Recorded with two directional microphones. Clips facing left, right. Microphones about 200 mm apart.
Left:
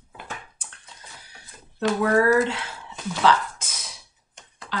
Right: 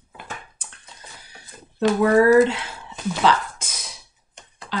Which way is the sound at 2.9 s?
15° right (ahead or behind).